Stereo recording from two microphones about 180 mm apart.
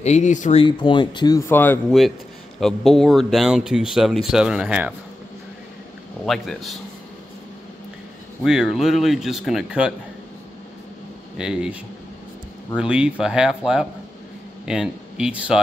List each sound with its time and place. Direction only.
0.0 s speech: 40° left (ahead or behind)
0.7 s speech: 25° left (ahead or behind)
1.5 s speech: 10° left (ahead or behind); by 4.9 s 5° right (ahead or behind)
6.2 s speech: centre (ahead or behind)
8.5 s speech: centre (ahead or behind)
11.3 s speech: 5° right (ahead or behind)
12.7 s speech: 5° right (ahead or behind)